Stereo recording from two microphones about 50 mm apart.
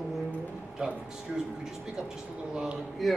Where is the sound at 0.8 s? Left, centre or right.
Centre.